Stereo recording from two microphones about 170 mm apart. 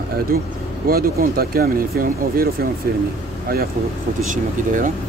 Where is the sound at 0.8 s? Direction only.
60° right (ahead or behind).